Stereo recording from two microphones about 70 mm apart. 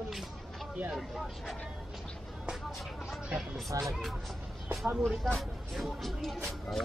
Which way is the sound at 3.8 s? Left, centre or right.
Centre.